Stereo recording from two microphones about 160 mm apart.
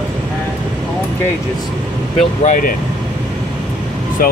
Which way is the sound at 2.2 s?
55° left (ahead or behind).